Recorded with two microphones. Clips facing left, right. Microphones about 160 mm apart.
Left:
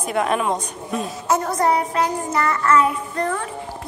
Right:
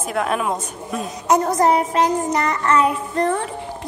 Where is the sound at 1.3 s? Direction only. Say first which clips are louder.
Right 3 dB; 20° right (ahead or behind).